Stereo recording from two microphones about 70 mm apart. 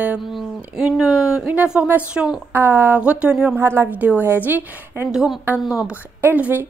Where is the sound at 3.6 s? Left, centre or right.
Right.